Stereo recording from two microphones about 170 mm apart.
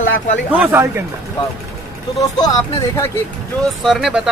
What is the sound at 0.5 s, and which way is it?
Speech, 10° right (ahead or behind).